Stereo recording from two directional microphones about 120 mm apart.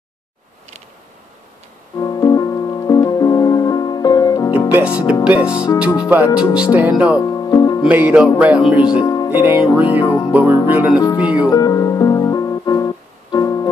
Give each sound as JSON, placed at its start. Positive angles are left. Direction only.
{"t": 2.0, "sound": "music", "side_deg": 30}
{"t": 4.6, "sound": "music", "side_deg": -15}
{"t": 5.2, "sound": "speech", "side_deg": -10}
{"t": 7.2, "sound": "music", "side_deg": 30}
{"t": 7.9, "sound": "speech", "side_deg": -10}
{"t": 9.0, "sound": "music", "side_deg": 30}
{"t": 9.3, "sound": "speech", "side_deg": -15}
{"t": 10.0, "sound": "music", "side_deg": 25}
{"t": 10.3, "sound": "speech", "side_deg": -10}
{"t": 11.4, "sound": "music", "side_deg": 30}